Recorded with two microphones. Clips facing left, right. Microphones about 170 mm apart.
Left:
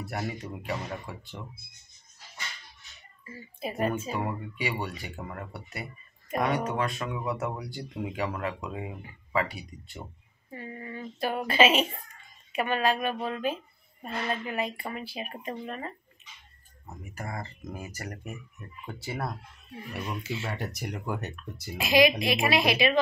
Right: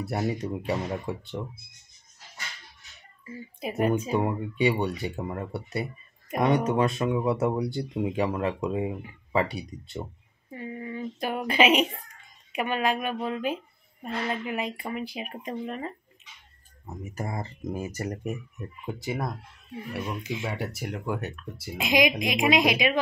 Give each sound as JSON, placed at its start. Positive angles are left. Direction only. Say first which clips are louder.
{"t": 0.0, "sound": "speech", "louder": "right 6 dB", "side_deg": -25}
{"t": 3.6, "sound": "speech", "louder": "right 4 dB", "side_deg": -15}
{"t": 10.6, "sound": "speech", "louder": "right 5 dB", "side_deg": -15}
{"t": 17.6, "sound": "speech", "louder": "right 7 dB", "side_deg": -20}
{"t": 21.7, "sound": "speech", "louder": "left 2 dB", "side_deg": -15}